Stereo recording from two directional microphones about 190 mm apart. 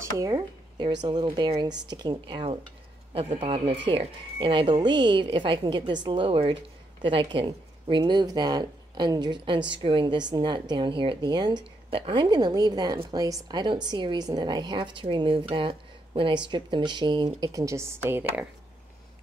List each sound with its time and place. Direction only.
0.0 s speech: 20° right (ahead or behind)